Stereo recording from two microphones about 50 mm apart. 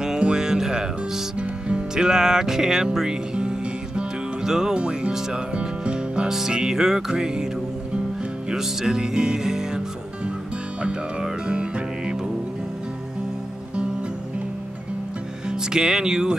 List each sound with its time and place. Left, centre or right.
0.0 s music: centre
4.5 s speech: centre
6.2 s music: centre
8.5 s music: centre
15.4 s music: centre